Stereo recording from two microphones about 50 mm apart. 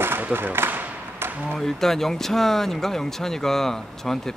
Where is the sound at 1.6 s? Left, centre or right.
Centre.